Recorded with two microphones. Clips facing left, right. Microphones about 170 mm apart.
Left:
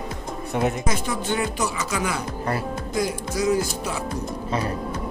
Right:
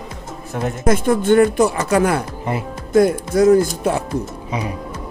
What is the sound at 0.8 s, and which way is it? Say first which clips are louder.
Speech: right 10 dB; 55° right (ahead or behind).